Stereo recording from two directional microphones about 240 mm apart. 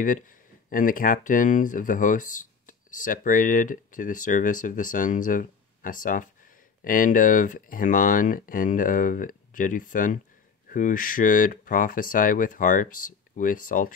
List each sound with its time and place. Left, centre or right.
0.7 s speech: left